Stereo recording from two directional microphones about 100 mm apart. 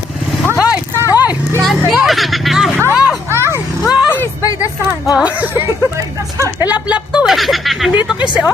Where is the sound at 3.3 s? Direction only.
25° right (ahead or behind).